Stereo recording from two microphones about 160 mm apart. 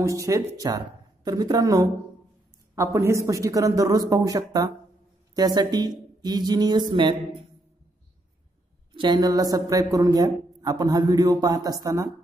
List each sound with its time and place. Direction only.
0.0 s speech: 20° right (ahead or behind)
8.9 s speech: 25° right (ahead or behind)